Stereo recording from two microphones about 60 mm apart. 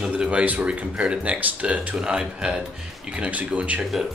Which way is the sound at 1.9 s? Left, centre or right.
Centre.